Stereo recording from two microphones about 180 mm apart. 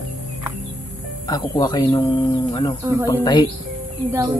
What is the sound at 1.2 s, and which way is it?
Speech, 20° left (ahead or behind).